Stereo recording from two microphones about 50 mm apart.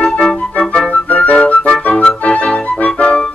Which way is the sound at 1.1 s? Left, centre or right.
Left.